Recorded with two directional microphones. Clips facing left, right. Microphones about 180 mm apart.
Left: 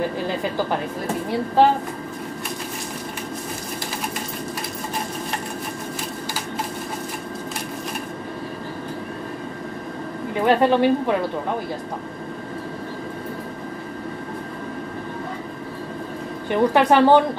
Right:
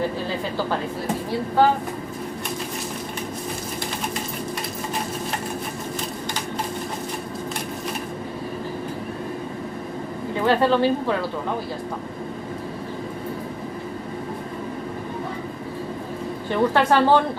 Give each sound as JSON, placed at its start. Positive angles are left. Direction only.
{"t": 10.4, "sound": "speech", "side_deg": 15}
{"t": 16.4, "sound": "speech", "side_deg": 15}